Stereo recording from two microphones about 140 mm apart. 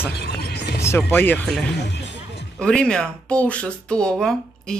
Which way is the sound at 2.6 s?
5° left (ahead or behind).